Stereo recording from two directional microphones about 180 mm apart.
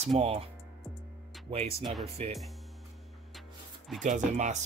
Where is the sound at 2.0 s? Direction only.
35° right (ahead or behind).